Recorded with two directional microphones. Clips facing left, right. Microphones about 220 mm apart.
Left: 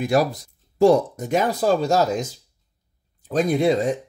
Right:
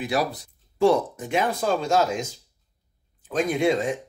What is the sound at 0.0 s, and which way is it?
Speech, 45° left (ahead or behind).